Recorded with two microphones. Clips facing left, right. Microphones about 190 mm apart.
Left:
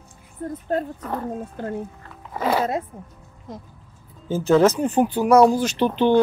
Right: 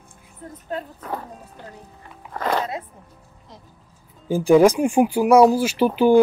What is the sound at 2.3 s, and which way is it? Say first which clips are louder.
Music: left 1 dB; 5° left (ahead or behind).